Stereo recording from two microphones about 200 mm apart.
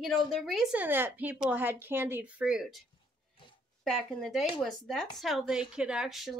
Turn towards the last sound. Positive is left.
turn(degrees=0)  # may be behind; listen again after turning